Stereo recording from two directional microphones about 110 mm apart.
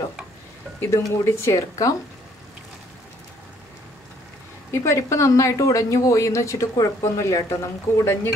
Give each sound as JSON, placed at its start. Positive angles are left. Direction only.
{"t": 0.7, "sound": "speech", "side_deg": 25}
{"t": 4.6, "sound": "speech", "side_deg": 25}